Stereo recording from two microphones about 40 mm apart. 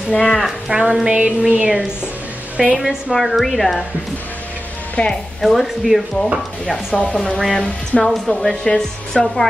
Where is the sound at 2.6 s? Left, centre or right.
Centre.